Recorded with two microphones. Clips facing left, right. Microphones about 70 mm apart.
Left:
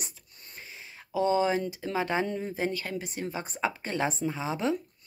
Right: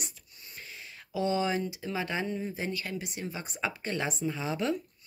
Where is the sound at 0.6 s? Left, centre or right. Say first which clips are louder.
Even; left.